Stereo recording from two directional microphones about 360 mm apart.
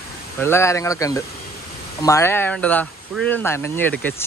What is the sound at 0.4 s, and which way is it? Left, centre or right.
Speech, centre.